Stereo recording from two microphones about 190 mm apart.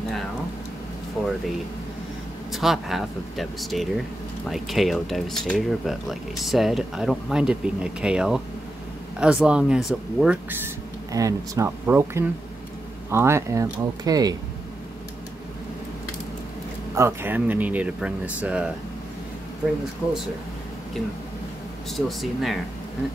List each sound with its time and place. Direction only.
2.5 s speech: centre (ahead or behind); by 14.3 s 20° right (ahead or behind)
16.9 s speech: 15° right (ahead or behind)
21.9 s speech: centre (ahead or behind)